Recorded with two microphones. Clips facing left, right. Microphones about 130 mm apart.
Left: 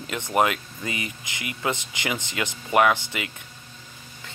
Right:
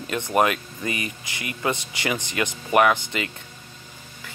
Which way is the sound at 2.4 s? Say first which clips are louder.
Right 3 dB; 20° right (ahead or behind).